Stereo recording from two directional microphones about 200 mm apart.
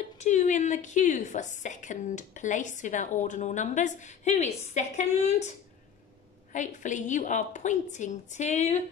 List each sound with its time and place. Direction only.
0.2 s a woman's voice: 35° left (ahead or behind)
6.5 s a woman's voice: 40° left (ahead or behind)